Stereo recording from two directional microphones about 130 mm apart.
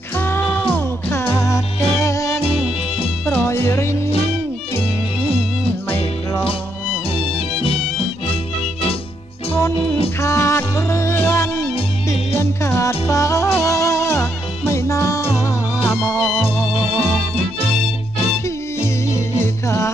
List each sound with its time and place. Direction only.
0.2 s music: 15° left (ahead or behind)
9.5 s music: 20° left (ahead or behind)
16.0 s music: centre (ahead or behind)
18.8 s music: 20° left (ahead or behind)